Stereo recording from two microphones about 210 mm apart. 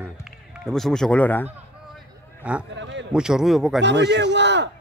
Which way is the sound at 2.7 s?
60° right (ahead or behind).